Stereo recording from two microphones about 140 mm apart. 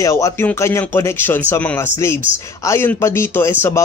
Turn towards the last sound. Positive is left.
turn(degrees=20)  # may be behind; listen again after turning